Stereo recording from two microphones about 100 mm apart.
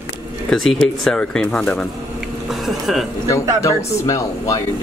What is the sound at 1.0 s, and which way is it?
Speech, 5° left (ahead or behind).